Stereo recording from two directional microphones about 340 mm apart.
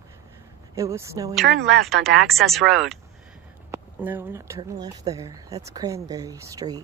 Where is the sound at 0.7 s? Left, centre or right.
Centre.